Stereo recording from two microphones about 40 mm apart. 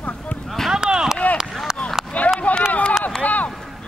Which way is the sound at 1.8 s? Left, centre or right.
Left.